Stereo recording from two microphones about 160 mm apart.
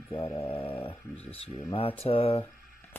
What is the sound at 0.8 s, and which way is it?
Speech, 40° left (ahead or behind).